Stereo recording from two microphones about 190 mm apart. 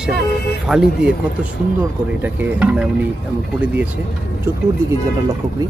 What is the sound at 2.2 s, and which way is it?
Speech, 5° right (ahead or behind).